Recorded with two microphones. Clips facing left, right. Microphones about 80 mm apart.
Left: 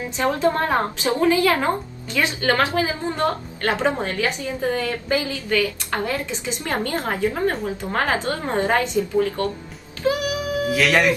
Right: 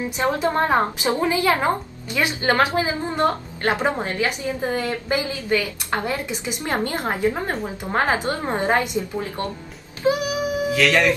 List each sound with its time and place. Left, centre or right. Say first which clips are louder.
0.2 s a woman's voice: left 1 dB; right
10.0 s music: right 1 dB; right
10.7 s speech: left 1 dB; centre